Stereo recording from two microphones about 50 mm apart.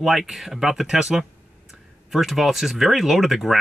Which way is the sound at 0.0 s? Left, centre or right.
Centre.